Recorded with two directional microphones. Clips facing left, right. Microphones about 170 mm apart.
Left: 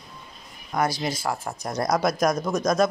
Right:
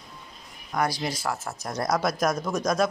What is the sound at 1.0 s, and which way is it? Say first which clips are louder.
Speech: left 2 dB; 10° left (ahead or behind).